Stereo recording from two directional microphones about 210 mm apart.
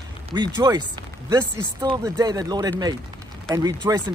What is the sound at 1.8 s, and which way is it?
Speech, 20° right (ahead or behind).